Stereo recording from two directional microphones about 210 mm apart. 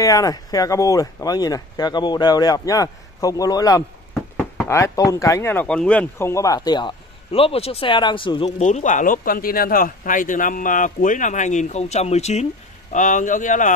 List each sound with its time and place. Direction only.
0.0 s speech: 15° left (ahead or behind); by 13.7 s 35° left (ahead or behind)